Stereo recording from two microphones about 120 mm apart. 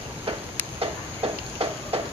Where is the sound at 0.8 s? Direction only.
50° right (ahead or behind).